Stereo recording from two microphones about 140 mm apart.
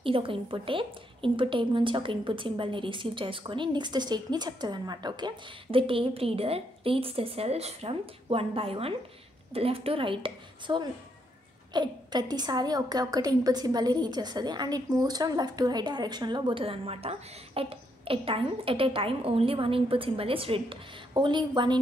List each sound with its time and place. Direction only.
0.0 s a woman's voice: 40° right (ahead or behind)